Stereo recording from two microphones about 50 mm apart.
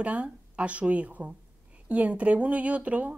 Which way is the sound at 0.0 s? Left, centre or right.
Right.